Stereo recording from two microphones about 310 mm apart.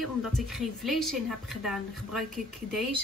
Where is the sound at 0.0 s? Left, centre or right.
Centre.